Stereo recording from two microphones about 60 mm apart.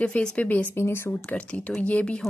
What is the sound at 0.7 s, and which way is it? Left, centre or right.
Speech, left.